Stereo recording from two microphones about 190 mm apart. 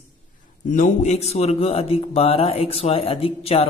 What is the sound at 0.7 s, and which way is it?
A man's voice, 40° left (ahead or behind).